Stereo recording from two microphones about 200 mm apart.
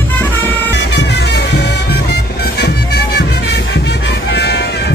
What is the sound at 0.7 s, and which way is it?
Music, 55° left (ahead or behind).